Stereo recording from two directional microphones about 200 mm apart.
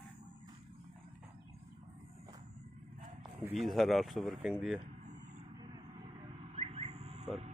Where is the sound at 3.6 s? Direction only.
Centre (ahead or behind).